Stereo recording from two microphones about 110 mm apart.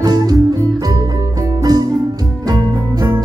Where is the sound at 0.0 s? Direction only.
35° right (ahead or behind).